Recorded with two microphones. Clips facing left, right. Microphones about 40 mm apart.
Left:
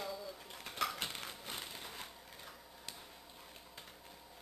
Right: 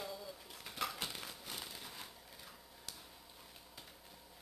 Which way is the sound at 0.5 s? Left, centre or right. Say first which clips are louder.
Left 3 dB; centre.